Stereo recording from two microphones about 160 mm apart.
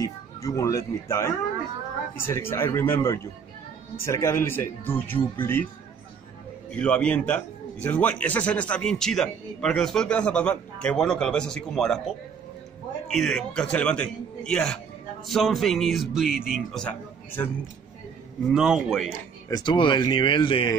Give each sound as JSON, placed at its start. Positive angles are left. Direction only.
{"t": 0.0, "sound": "a man's voice", "side_deg": 20}
{"t": 6.7, "sound": "a man's voice", "side_deg": 5}
{"t": 13.1, "sound": "a man's voice", "side_deg": 5}
{"t": 18.5, "sound": "a man's voice", "side_deg": -5}
{"t": 19.5, "sound": "speech", "side_deg": 30}